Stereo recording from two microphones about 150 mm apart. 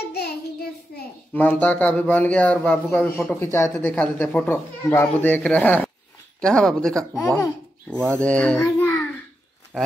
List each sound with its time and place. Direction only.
0.0 s child singing: 90° left
1.3 s speech: 10° left (ahead or behind)
7.9 s speech: 15° right (ahead or behind)
8.2 s a child's voice: 10° left (ahead or behind)
9.7 s bird: 5° left (ahead or behind)